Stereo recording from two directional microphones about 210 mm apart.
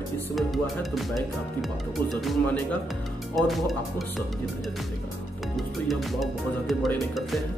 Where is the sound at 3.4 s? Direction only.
Centre (ahead or behind).